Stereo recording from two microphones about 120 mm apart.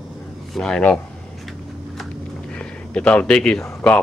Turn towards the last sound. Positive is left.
turn(degrees=10)  # may be behind; listen again after turning